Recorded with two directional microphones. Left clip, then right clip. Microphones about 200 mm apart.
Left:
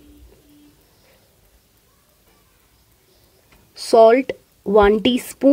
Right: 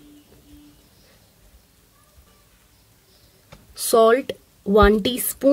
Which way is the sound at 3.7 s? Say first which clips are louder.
Left 4 dB; 20° left (ahead or behind).